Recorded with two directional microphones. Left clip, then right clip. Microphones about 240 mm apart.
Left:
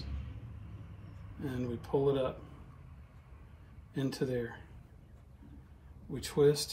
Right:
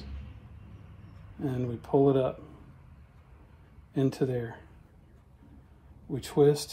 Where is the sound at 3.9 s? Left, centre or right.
Right.